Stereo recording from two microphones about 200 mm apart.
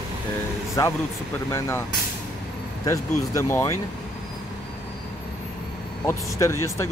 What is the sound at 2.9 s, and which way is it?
Speech, 15° left (ahead or behind).